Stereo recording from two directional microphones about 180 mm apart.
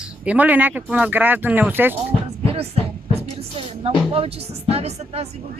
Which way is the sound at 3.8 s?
30° right (ahead or behind).